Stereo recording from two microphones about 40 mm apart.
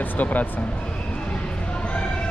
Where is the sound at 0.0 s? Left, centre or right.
Left.